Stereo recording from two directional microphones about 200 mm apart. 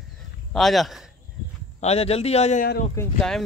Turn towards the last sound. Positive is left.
turn(degrees=0)  # may be behind; listen again after turning